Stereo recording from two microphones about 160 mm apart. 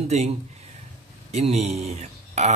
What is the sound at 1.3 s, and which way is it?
Speech, 45° right (ahead or behind).